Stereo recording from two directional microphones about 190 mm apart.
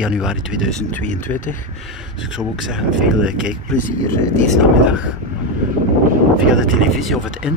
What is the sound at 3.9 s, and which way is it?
Speech, 15° left (ahead or behind).